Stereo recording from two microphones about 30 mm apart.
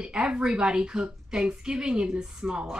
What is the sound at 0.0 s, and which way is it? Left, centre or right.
A woman's voice, right.